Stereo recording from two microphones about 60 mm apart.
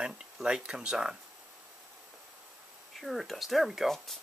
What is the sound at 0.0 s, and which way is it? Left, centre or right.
Speech, centre.